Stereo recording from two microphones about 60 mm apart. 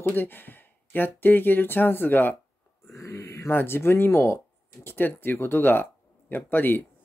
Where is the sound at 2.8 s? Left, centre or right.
Left.